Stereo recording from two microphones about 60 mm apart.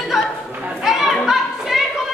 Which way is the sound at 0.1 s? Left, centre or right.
Centre.